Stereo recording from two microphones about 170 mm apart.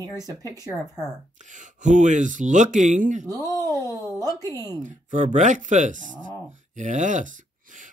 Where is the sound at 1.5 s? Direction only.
45° right (ahead or behind).